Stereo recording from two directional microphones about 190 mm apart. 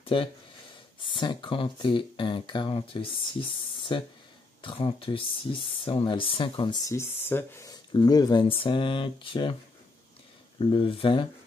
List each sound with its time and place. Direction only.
0.0 s speech: 30° left (ahead or behind)
4.6 s speech: 25° left (ahead or behind)
10.6 s speech: 25° left (ahead or behind)